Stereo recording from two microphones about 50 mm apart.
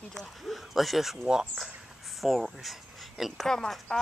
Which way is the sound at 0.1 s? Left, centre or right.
Centre.